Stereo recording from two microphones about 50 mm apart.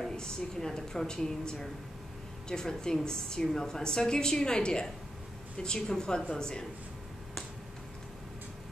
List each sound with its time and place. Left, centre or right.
0.0 s a woman's voice: centre